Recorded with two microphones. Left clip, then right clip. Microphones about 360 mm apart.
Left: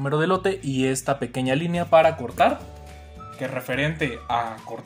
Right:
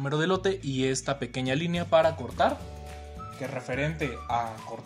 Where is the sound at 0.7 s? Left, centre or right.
Right.